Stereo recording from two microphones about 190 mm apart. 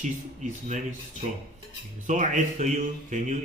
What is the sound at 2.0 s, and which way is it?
Speech, 40° right (ahead or behind).